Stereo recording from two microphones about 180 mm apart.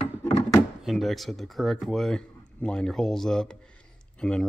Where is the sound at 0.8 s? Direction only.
Centre (ahead or behind).